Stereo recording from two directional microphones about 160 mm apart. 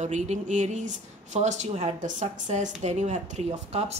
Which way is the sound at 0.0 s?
50° right (ahead or behind).